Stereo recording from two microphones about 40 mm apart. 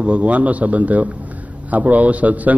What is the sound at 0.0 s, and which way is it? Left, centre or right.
A man's voice, right.